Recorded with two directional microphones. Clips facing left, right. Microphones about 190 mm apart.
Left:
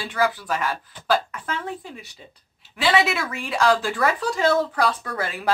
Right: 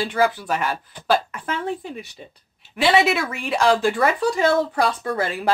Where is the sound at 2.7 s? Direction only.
20° right (ahead or behind).